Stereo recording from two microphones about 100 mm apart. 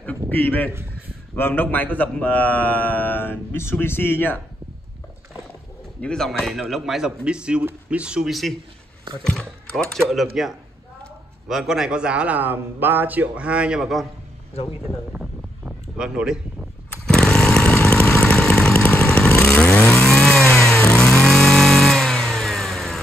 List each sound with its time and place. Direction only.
0.3 s a man's voice: 20° left (ahead or behind)
5.9 s a man's voice: 5° left (ahead or behind)
14.5 s speech: 85° left
15.1 s a sound: 10° right (ahead or behind)
17.1 s chainsaw: 5° left (ahead or behind)